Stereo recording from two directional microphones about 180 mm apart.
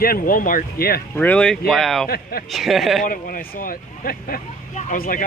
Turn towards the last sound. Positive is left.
turn(degrees=50)  # may be behind; listen again after turning